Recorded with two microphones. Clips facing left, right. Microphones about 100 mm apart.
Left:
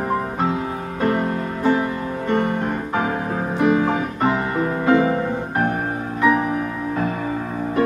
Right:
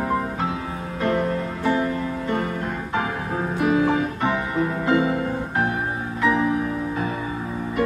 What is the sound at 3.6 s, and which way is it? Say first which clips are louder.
Music: left 2 dB; 35° left (ahead or behind).